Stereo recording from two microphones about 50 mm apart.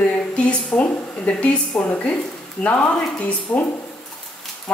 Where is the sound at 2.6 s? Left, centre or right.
Left.